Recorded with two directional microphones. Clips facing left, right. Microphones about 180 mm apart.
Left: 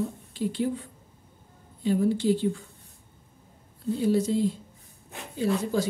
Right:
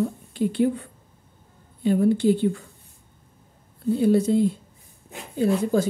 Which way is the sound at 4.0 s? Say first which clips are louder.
Right 5 dB; 55° right (ahead or behind).